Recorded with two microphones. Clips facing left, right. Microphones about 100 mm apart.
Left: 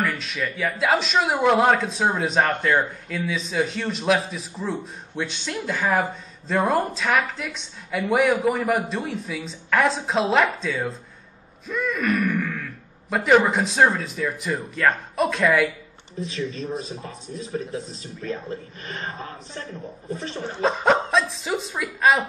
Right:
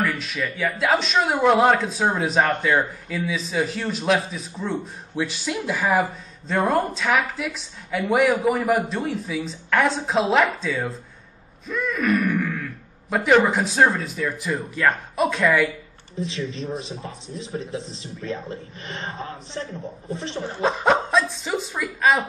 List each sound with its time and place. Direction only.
0.0 s speech: centre (ahead or behind)
11.6 s a sound: centre (ahead or behind)
13.1 s speech: centre (ahead or behind)
16.3 s a man's voice: 30° right (ahead or behind)
17.9 s a man's voice: 25° right (ahead or behind)
20.4 s speech: centre (ahead or behind)